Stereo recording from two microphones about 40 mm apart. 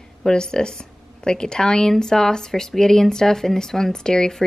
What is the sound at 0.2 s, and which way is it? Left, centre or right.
A woman's voice, centre.